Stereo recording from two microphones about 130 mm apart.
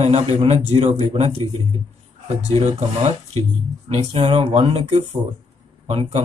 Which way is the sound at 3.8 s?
40° right (ahead or behind).